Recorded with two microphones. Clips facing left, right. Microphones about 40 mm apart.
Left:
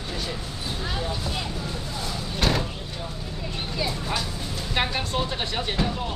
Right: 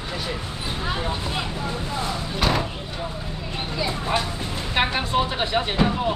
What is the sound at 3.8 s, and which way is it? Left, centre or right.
Vehicle, right.